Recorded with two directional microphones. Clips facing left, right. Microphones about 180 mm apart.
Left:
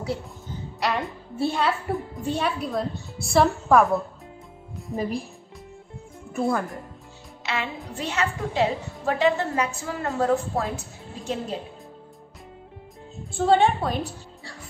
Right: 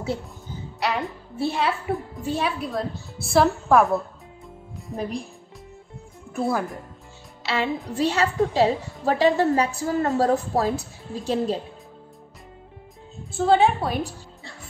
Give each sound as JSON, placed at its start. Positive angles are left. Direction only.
{"t": 0.7, "sound": "a woman's voice", "side_deg": 0}
{"t": 6.3, "sound": "a woman's voice", "side_deg": 0}
{"t": 7.4, "sound": "a woman's voice", "side_deg": -35}
{"t": 13.3, "sound": "a woman's voice", "side_deg": 0}